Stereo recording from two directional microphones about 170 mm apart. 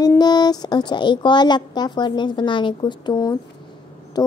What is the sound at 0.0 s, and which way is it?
A woman's voice, 25° left (ahead or behind).